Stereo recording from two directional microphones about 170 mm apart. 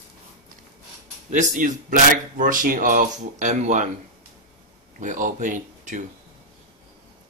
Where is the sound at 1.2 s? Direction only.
50° right (ahead or behind).